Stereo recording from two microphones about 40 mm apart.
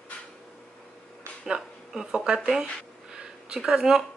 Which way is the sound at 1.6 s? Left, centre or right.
Centre.